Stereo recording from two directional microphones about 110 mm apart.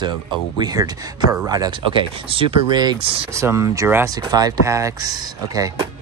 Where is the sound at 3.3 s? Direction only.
25° right (ahead or behind).